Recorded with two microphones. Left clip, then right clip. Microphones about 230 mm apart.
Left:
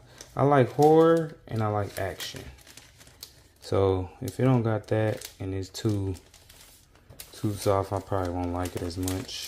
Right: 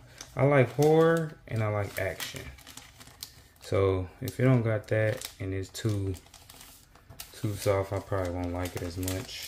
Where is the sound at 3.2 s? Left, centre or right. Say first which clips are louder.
Even; centre.